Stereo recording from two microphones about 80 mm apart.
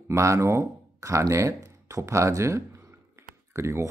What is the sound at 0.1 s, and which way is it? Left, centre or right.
Speech, right.